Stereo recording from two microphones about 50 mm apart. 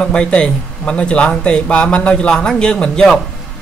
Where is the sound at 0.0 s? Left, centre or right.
Centre.